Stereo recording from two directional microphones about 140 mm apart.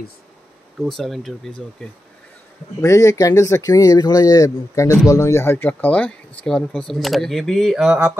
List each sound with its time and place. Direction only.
0.7 s speech: centre (ahead or behind)
2.8 s speech: 20° left (ahead or behind); by 8.1 s 5° right (ahead or behind)